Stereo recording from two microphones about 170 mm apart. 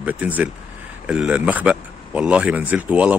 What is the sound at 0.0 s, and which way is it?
Speech, 10° right (ahead or behind).